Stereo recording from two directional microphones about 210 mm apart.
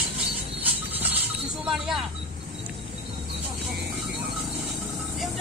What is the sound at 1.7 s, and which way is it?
Vehicle, centre (ahead or behind).